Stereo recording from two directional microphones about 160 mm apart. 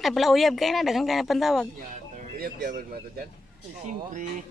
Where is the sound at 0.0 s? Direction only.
Centre (ahead or behind).